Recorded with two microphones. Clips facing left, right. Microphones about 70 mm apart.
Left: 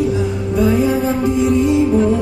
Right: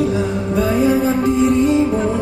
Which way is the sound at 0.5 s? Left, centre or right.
Centre.